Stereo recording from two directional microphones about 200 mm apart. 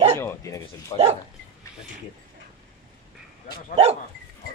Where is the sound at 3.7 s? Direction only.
30° right (ahead or behind).